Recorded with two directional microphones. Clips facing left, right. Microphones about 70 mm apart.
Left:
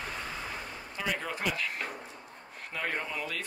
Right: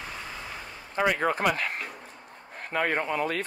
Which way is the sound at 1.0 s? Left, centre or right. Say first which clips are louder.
Right 10 dB; right.